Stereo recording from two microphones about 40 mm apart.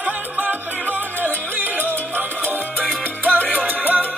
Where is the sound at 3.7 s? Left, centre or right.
Right.